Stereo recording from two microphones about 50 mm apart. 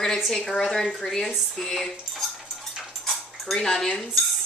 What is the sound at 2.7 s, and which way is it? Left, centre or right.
Dog, centre.